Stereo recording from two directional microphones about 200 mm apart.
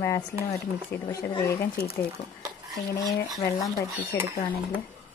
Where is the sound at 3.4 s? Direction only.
15° left (ahead or behind).